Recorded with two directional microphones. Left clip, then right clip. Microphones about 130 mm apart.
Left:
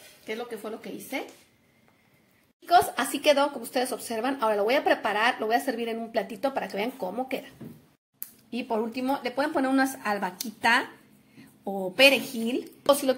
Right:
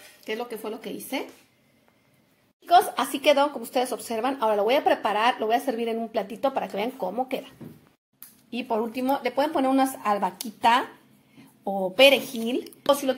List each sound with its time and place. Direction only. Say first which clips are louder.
0.6 s speech: right 3 dB; 50° right (ahead or behind)
2.6 s a woman's voice: right 2 dB; 10° right (ahead or behind)
12.8 s a woman's voice: even; centre (ahead or behind)